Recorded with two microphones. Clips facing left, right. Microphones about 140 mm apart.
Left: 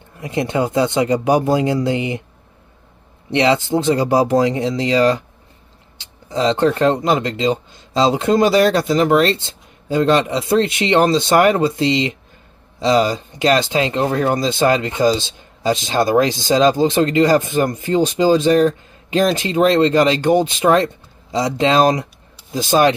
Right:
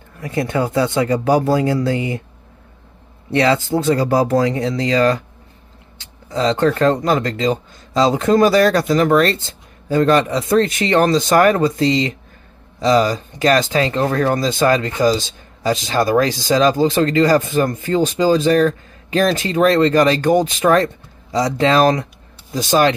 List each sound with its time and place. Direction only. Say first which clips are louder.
0.2 s speech: even; 20° left (ahead or behind)
3.3 s speech: even; 20° left (ahead or behind)
6.3 s speech: even; 30° left (ahead or behind)